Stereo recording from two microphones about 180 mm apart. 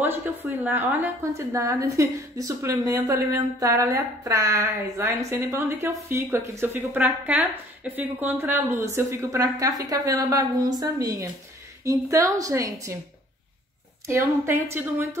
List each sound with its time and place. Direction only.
0.0 s a woman's voice: 10° right (ahead or behind)
14.0 s a woman's voice: 15° right (ahead or behind)